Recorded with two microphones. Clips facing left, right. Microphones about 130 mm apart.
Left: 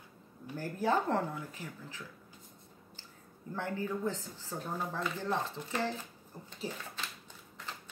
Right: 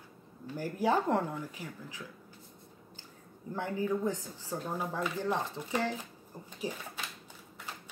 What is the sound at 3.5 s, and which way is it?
Speech, 15° right (ahead or behind).